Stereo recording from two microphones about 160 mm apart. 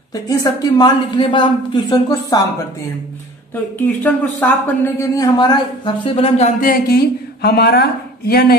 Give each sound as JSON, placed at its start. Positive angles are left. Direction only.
{"t": 0.1, "sound": "a man's voice", "side_deg": 20}
{"t": 4.0, "sound": "a man's voice", "side_deg": 10}
{"t": 6.6, "sound": "speech", "side_deg": 65}
{"t": 7.4, "sound": "speech", "side_deg": 85}